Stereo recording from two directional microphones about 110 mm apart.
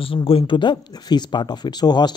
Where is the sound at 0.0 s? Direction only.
55° left (ahead or behind).